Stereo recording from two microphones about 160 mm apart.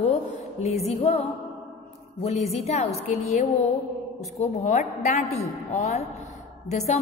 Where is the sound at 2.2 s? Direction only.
40° left (ahead or behind).